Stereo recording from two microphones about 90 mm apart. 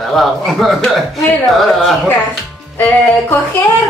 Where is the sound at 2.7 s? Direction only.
30° left (ahead or behind).